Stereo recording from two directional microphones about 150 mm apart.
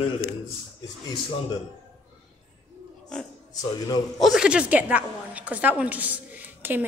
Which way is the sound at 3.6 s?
25° left (ahead or behind).